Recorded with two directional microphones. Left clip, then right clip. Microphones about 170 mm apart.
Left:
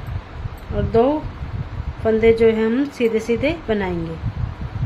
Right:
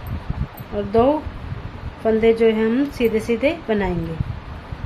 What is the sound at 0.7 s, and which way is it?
Speech, centre (ahead or behind).